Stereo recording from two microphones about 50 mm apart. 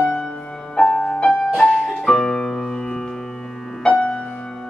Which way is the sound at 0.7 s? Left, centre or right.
Centre.